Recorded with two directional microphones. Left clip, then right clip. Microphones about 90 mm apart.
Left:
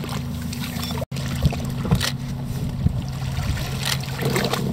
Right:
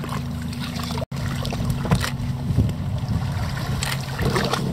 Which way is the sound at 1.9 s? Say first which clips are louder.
Even; 35° right (ahead or behind).